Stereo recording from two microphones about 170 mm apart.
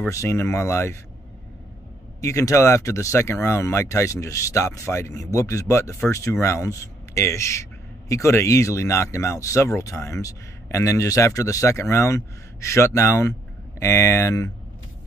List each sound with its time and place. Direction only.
0.0 s speech: 15° left (ahead or behind)
2.2 s speech: 20° left (ahead or behind)